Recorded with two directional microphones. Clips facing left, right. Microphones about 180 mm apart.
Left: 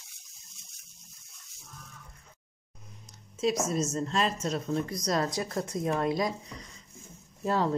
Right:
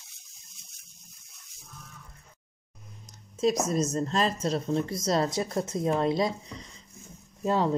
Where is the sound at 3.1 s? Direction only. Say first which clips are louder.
Right 3 dB; 40° right (ahead or behind).